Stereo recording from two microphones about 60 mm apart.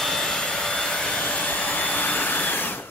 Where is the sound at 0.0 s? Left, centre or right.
Centre.